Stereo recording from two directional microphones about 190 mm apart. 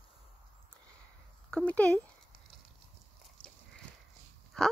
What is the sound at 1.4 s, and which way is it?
Speech, 5° left (ahead or behind).